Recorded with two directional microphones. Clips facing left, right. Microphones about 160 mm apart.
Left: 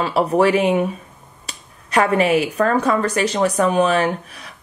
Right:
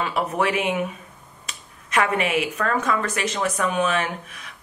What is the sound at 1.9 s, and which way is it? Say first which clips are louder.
Speech: left 6 dB; 35° left (ahead or behind).